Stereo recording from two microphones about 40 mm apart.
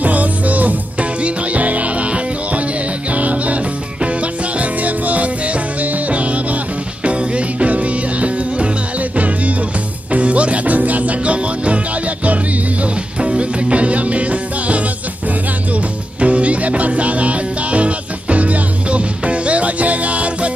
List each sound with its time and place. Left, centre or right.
0.0 s music: right
10.1 s music: right
13.2 s music: right
16.2 s music: right